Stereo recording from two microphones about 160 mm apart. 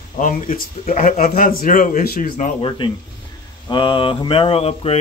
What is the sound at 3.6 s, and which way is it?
Speech, 30° left (ahead or behind).